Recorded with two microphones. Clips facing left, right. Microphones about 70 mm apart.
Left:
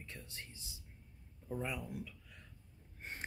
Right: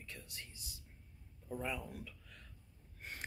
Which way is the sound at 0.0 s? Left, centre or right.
Left.